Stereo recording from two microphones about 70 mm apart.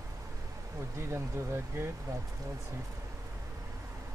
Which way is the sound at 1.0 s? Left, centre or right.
Right.